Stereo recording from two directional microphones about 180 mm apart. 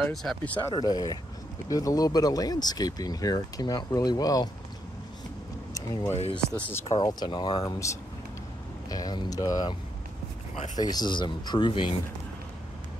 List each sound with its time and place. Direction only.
0.0 s speech: centre (ahead or behind)
0.6 s speech: 20° left (ahead or behind)
6.1 s speech: 35° left (ahead or behind)
6.9 s speech: 20° left (ahead or behind)
10.8 s speech: 20° left (ahead or behind)